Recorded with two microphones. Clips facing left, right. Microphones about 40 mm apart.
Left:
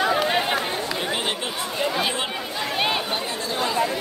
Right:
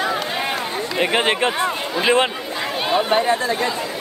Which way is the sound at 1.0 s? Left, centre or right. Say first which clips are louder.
Right 8 dB; right.